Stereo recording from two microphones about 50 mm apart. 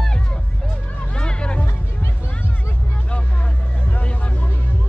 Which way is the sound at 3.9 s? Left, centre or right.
Left.